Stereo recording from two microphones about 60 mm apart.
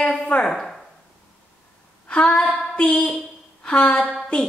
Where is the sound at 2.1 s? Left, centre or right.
Centre.